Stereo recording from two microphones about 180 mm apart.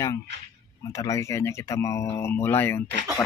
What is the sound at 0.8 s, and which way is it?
Speech, 20° left (ahead or behind).